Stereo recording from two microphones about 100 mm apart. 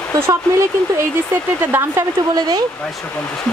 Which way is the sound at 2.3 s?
40° right (ahead or behind).